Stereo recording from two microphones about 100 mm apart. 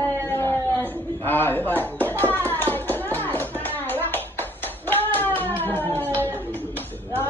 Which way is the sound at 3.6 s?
20° left (ahead or behind).